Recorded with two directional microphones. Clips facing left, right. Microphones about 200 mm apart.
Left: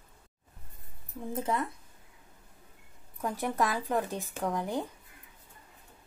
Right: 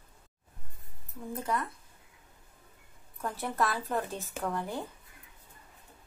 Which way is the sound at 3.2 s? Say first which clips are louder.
Left 2 dB; 15° left (ahead or behind).